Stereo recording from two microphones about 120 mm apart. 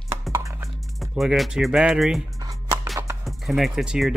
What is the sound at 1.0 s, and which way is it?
Speech, 5° right (ahead or behind).